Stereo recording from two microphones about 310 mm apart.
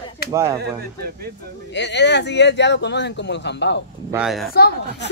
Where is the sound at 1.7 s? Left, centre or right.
Left.